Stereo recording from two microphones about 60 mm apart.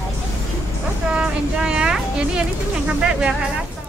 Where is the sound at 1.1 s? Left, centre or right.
Centre.